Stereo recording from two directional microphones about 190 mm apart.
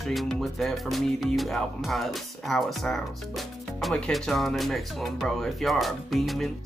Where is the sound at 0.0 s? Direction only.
Centre (ahead or behind).